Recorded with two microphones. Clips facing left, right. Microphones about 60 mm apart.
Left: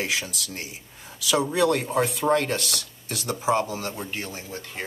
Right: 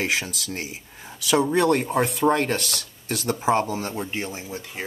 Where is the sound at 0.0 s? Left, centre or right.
Right.